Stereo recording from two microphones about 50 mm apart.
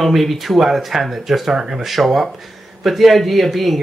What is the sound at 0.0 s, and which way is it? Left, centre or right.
Speech, centre.